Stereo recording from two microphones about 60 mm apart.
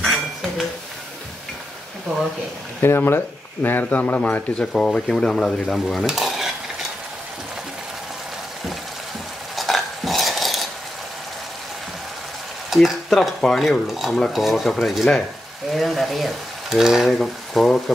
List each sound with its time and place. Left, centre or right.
0.0 s dishes: centre
3.1 s speech: left
4.0 s speech: left
4.7 s speech: centre
6.0 s stir: centre
9.6 s dishes: centre
12.6 s stir: centre
13.4 s speech: centre